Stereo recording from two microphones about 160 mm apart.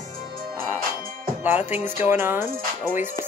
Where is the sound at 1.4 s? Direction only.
10° right (ahead or behind).